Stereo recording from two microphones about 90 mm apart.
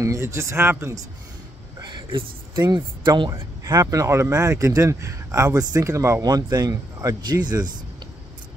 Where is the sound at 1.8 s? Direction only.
60° right (ahead or behind).